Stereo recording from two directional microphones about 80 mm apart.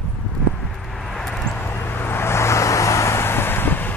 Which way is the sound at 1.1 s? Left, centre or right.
Centre.